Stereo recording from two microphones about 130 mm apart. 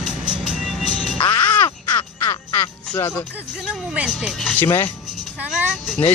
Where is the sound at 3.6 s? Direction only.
5° right (ahead or behind).